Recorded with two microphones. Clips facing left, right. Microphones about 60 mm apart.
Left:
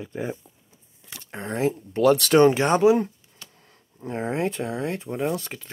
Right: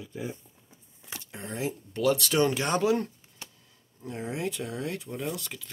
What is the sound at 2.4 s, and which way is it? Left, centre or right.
Speech, left.